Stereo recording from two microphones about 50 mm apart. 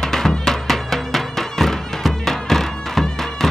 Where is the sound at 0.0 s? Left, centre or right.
Centre.